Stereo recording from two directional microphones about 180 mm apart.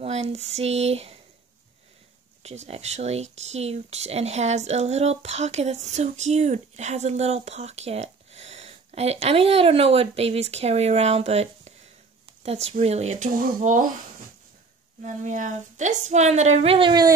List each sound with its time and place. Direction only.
0.0 s speech: 35° right (ahead or behind)
2.4 s speech: 35° right (ahead or behind)
15.0 s speech: 45° right (ahead or behind); by 17.1 s 25° right (ahead or behind)